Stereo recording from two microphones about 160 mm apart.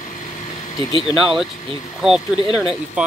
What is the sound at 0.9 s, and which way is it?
Speech, 25° left (ahead or behind).